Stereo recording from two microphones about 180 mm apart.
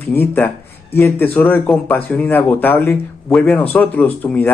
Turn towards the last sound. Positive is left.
turn(degrees=10)  # may be behind; listen again after turning